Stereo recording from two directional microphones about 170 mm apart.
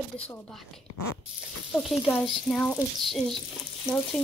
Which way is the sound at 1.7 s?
Centre (ahead or behind).